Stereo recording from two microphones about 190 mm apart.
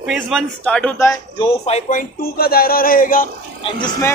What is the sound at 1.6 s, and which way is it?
Speech, 40° left (ahead or behind).